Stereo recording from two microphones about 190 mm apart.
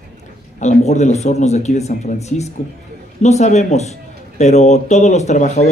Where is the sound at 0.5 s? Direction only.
35° left (ahead or behind).